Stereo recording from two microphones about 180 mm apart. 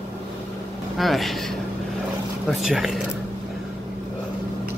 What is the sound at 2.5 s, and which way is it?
Speech, centre (ahead or behind).